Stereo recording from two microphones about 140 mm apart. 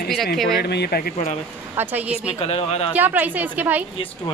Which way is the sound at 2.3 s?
45° left (ahead or behind).